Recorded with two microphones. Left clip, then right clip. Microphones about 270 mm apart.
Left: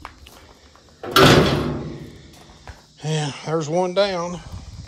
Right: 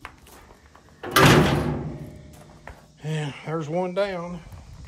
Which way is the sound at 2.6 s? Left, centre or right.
Centre.